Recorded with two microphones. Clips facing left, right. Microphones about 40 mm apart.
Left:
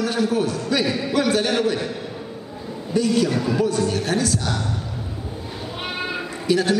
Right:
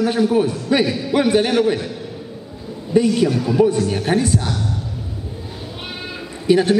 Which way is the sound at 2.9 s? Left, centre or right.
Centre.